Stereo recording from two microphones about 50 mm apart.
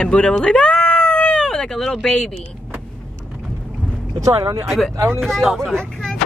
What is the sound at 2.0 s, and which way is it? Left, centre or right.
Speech, centre.